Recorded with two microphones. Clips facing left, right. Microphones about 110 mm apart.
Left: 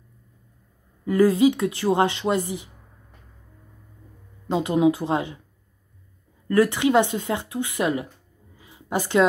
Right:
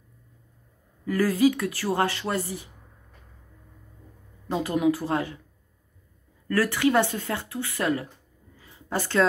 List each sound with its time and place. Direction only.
1.0 s speech: 25° left (ahead or behind)
4.5 s speech: 20° left (ahead or behind)
6.4 s speech: 20° left (ahead or behind)
8.5 s a sound: 15° left (ahead or behind)